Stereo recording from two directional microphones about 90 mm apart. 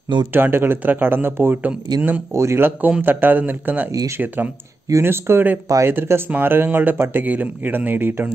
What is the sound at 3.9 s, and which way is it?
Speech, 35° right (ahead or behind).